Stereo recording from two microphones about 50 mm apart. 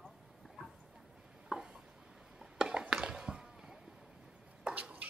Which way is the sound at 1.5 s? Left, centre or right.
Centre.